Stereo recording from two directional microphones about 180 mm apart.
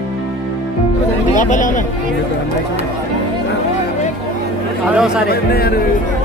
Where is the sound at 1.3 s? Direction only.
45° left (ahead or behind).